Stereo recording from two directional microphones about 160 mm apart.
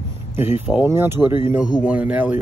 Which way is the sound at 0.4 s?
10° right (ahead or behind).